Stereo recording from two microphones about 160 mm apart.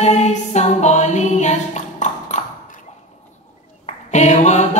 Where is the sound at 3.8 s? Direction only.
45° left (ahead or behind).